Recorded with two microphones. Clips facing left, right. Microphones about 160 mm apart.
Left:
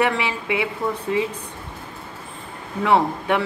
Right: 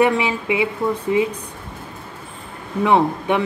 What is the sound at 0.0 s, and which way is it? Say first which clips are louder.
Speech: right 4 dB; 20° right (ahead or behind).